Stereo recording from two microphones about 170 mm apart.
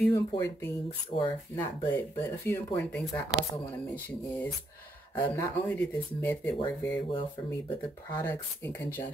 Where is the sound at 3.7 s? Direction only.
10° left (ahead or behind).